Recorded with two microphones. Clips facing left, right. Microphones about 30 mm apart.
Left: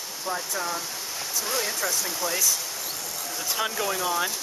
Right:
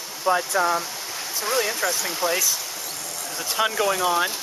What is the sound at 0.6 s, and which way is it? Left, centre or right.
Speech, right.